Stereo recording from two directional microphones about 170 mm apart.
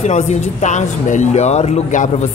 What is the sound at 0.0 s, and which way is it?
Speech, 45° left (ahead or behind).